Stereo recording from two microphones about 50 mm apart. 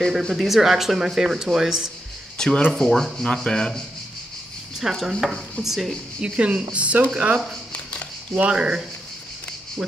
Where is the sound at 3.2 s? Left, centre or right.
Centre.